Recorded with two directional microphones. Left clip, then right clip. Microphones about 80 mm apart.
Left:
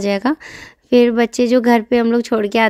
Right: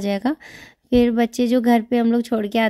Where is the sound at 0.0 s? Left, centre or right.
Left.